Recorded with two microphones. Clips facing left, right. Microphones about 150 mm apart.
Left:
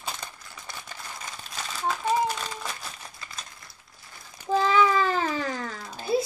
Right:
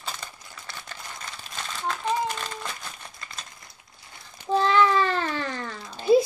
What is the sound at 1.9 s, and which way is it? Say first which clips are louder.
Crumpling: left 2 dB; 5° left (ahead or behind).